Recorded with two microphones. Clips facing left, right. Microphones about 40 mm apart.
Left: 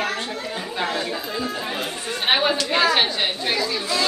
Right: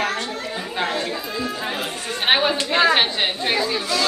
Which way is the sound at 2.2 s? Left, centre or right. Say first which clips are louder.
Right 1 dB; right.